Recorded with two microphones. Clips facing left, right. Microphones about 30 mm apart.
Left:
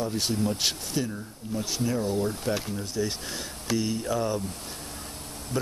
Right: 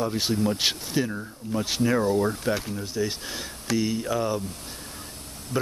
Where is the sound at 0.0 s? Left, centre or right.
Centre.